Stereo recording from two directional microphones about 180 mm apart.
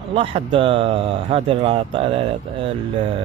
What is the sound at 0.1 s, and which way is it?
Speech, 30° right (ahead or behind).